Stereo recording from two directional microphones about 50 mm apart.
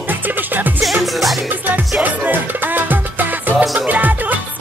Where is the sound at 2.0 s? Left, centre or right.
Right.